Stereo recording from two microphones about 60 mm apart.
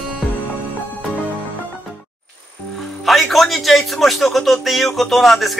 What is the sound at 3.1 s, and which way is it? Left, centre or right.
Speech, centre.